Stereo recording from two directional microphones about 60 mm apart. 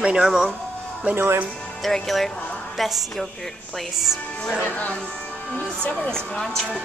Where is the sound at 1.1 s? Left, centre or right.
Right.